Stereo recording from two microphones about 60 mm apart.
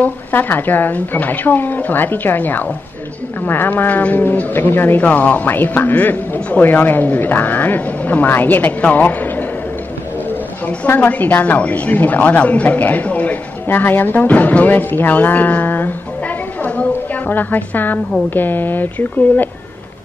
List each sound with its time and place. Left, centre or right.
0.0 s a man's voice: left
5.0 s a man's voice: left
10.8 s a woman's voice: left
16.6 s a sound: left
18.3 s a man's voice: left